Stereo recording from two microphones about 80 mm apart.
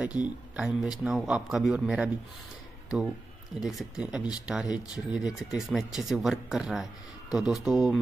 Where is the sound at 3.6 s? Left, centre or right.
Centre.